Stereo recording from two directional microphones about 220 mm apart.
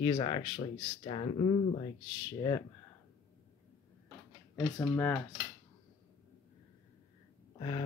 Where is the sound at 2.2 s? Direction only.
15° left (ahead or behind).